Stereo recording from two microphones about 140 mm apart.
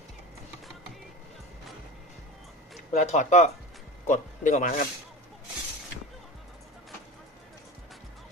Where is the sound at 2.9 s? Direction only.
60° left (ahead or behind).